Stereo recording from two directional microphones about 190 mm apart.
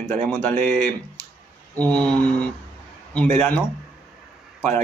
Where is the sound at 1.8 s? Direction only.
5° left (ahead or behind).